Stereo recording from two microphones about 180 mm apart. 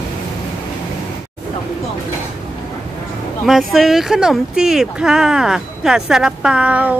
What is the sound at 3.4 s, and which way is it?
Speech, centre (ahead or behind).